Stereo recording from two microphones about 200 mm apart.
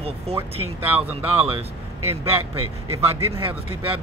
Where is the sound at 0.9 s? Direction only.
10° right (ahead or behind).